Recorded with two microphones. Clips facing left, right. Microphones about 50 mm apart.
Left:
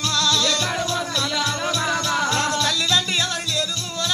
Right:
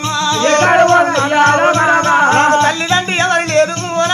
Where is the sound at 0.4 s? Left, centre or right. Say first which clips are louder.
Right 14 dB; right.